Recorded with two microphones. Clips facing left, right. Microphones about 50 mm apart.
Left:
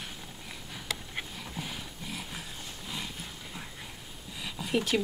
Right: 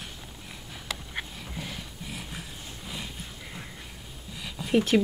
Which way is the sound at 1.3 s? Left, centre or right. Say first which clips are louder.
Right 1 dB; centre.